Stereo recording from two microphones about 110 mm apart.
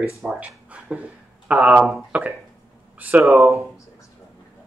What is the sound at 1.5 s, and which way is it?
Speech, 10° right (ahead or behind).